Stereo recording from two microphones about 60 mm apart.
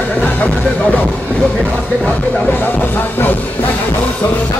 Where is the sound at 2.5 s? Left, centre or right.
Left.